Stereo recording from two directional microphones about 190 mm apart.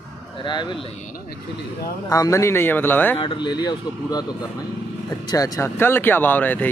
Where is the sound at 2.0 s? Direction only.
20° left (ahead or behind).